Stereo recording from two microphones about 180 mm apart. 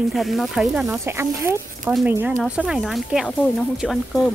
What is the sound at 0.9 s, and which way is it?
Speech, 15° right (ahead or behind).